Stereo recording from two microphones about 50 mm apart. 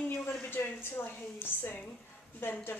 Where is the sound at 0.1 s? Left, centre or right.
Left.